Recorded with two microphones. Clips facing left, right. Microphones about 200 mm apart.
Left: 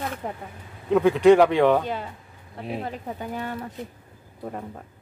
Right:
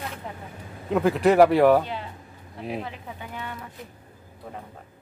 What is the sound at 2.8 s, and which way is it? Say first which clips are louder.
Speech: left 5 dB; 40° left (ahead or behind).